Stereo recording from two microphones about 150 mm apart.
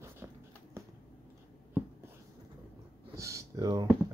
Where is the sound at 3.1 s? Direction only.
20° right (ahead or behind).